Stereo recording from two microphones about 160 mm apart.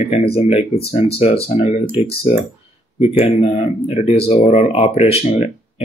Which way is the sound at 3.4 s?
40° left (ahead or behind).